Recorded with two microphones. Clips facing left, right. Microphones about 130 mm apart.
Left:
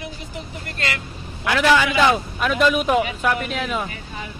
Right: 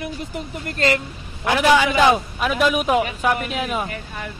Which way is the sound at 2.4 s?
5° right (ahead or behind).